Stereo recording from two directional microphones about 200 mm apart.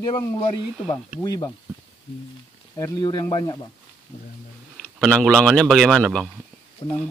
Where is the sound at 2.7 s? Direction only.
20° left (ahead or behind).